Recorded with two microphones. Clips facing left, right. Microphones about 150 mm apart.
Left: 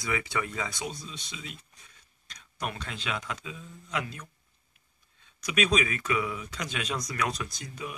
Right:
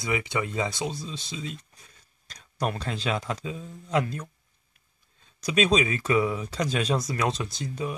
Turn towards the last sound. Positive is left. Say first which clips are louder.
# right 7 dB
turn(degrees=-30)  # may be behind; listen again after turning